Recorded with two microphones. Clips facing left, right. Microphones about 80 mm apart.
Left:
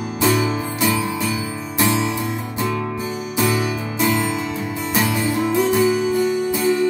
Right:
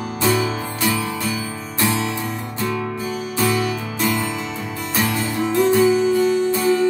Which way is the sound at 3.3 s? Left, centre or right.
Centre.